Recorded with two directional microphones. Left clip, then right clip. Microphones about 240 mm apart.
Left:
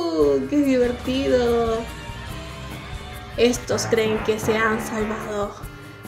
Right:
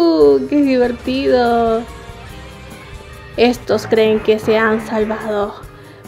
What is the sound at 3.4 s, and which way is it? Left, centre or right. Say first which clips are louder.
A woman's voice: right 6 dB; right.